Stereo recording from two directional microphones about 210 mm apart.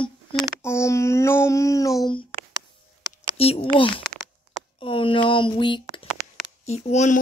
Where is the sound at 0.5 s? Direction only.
15° left (ahead or behind).